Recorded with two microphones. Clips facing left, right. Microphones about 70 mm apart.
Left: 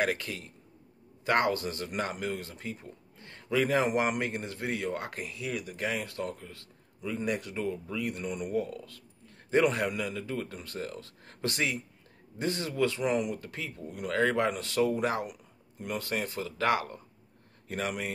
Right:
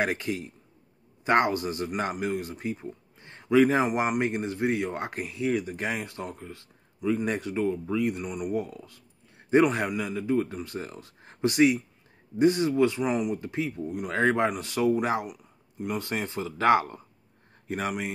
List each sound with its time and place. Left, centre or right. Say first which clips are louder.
0.0 s speech: right 3 dB; right
8.2 s speech: right 2 dB; centre
8.5 s speech: even; right
13.0 s speech: right 2 dB; centre
13.4 s speech: right 9 dB; right